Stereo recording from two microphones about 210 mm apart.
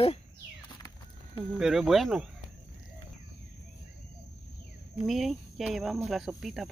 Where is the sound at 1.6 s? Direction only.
Centre (ahead or behind).